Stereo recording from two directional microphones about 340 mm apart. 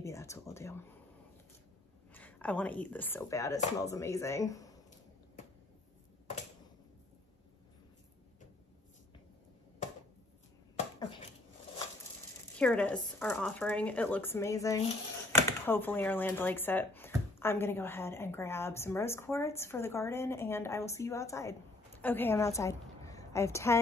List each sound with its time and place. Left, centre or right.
0.0 s a sound: centre
2.1 s speech: centre
12.5 s a woman's voice: centre